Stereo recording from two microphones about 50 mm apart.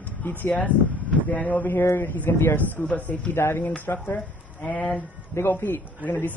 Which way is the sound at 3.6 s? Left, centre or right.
Left.